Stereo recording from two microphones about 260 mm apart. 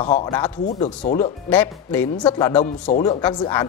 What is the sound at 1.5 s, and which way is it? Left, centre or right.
Speech, centre.